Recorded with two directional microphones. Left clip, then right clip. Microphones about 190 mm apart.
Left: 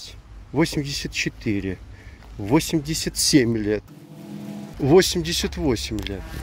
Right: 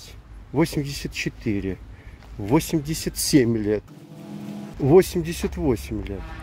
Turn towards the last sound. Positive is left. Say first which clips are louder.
# left 1 dB
turn(degrees=0)  # may be behind; listen again after turning